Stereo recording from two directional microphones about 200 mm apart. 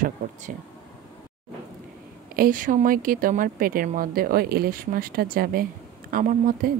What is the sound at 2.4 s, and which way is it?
Speech, 40° right (ahead or behind).